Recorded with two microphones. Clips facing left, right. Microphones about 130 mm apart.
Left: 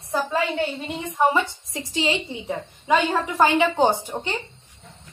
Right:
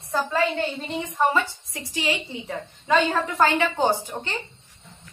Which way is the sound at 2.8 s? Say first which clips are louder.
Even; 15° left (ahead or behind).